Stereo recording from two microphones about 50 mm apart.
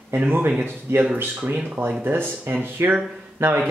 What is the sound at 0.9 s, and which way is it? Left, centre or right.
Speech, right.